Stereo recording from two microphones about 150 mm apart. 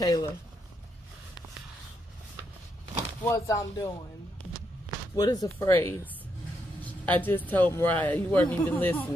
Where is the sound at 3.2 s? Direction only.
20° left (ahead or behind).